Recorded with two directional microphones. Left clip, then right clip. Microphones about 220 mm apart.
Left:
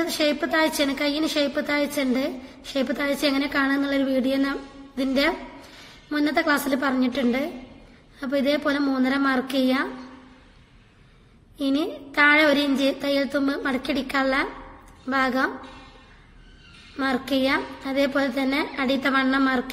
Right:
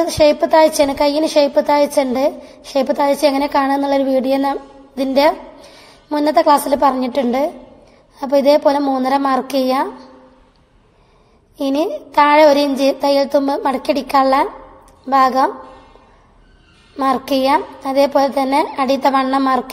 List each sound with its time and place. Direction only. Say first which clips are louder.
0.0 s a woman's voice: right 11 dB; 20° right (ahead or behind)
11.5 s a woman's voice: right 8 dB; 25° right (ahead or behind)
17.0 s a woman's voice: right 8 dB; 25° right (ahead or behind)